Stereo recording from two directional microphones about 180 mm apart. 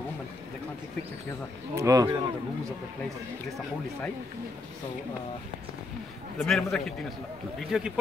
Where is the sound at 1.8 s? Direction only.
20° right (ahead or behind).